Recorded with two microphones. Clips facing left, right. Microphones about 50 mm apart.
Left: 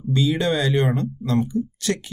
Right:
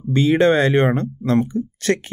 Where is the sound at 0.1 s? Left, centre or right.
Right.